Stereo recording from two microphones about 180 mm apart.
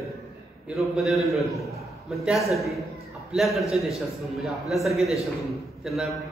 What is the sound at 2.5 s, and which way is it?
A man's voice, centre (ahead or behind).